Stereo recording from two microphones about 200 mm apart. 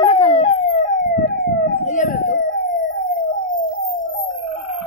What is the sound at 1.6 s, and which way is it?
Emergency vehicle, 40° left (ahead or behind).